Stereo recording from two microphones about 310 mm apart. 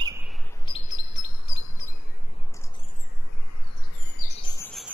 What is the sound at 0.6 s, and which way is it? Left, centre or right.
Chirp, centre.